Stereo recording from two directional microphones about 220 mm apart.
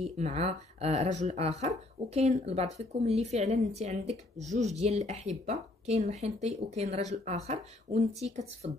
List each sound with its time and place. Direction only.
0.0 s speech: 30° right (ahead or behind)